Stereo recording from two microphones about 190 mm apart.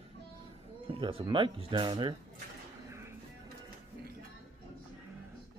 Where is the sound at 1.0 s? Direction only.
25° right (ahead or behind).